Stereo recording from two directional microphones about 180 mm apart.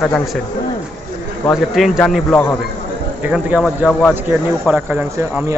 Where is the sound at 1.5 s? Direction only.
Centre (ahead or behind).